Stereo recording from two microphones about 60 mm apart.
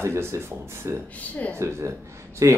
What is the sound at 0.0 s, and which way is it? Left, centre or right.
Speech, right.